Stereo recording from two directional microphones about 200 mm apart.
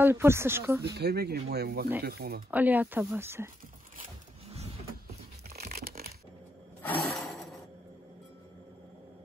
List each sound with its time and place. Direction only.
0.0 s speech: 10° right (ahead or behind)
0.9 s speech: 55° right (ahead or behind)
2.5 s speech: 10° right (ahead or behind)
5.6 s crumpling: 50° right (ahead or behind)
6.8 s a sound: 10° left (ahead or behind)